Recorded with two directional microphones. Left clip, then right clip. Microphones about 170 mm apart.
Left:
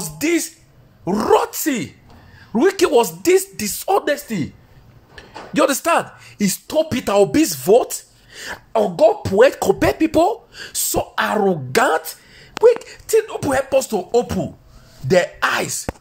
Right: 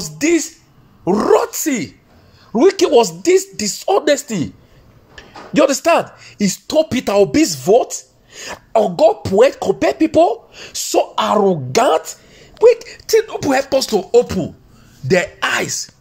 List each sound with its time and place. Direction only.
0.2 s speech: 5° right (ahead or behind)
2.5 s a woman's voice: centre (ahead or behind)
4.1 s speech: 35° right (ahead or behind)
5.1 s speech: 5° right (ahead or behind)
6.7 s speech: 25° right (ahead or behind)
7.2 s a woman's voice: 5° right (ahead or behind)
8.9 s speech: 15° right (ahead or behind)
9.6 s a woman's voice: centre (ahead or behind)
12.6 s a woman's voice: 15° right (ahead or behind)